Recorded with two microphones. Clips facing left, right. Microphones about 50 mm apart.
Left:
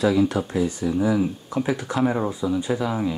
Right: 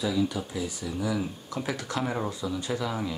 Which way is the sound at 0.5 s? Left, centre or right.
Left.